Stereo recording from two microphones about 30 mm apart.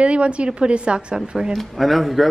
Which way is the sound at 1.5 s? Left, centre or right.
Centre.